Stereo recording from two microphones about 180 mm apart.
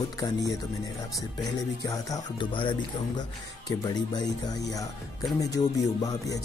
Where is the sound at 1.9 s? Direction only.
25° left (ahead or behind).